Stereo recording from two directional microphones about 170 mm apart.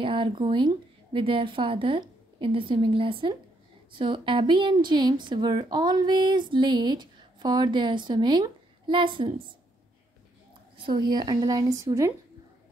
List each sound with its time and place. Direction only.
0.0 s a woman's voice: 30° right (ahead or behind)
10.8 s a woman's voice: 25° right (ahead or behind)